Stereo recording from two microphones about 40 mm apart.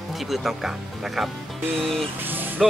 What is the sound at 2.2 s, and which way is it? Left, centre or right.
Speech, right.